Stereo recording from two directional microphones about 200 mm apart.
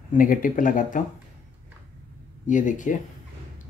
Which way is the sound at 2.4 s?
40° left (ahead or behind).